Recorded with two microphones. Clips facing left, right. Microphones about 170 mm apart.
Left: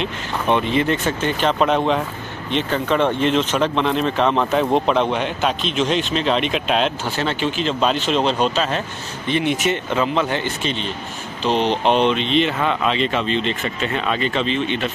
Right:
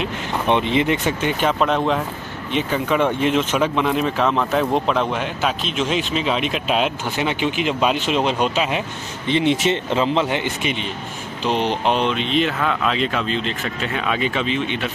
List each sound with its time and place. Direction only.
0.5 s speech: 20° right (ahead or behind)
1.6 s speech: centre (ahead or behind)
7.2 s speech: 15° right (ahead or behind)
9.3 s speech: 25° right (ahead or behind); by 14.9 s 10° right (ahead or behind)